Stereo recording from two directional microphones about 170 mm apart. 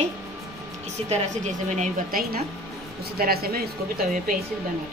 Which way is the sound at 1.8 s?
55° right (ahead or behind).